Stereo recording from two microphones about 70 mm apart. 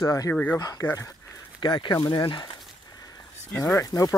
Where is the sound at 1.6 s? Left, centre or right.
Left.